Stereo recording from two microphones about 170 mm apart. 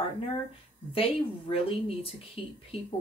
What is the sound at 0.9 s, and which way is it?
Speech, 35° left (ahead or behind).